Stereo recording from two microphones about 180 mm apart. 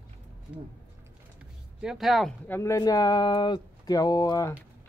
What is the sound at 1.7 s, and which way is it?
Speech, centre (ahead or behind).